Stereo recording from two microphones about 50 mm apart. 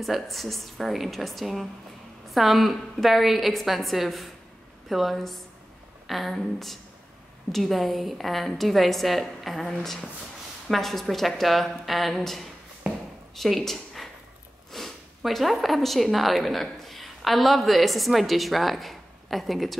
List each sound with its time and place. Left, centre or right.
0.0 s a woman's voice: centre
12.9 s a sound: right
13.3 s speech: centre